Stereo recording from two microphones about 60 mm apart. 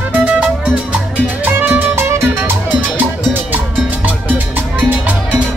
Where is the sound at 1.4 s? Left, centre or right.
Right.